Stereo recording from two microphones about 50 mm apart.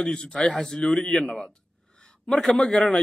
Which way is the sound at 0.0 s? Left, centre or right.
Centre.